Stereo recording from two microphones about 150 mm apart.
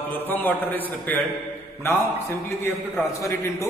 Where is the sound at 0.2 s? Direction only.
15° left (ahead or behind).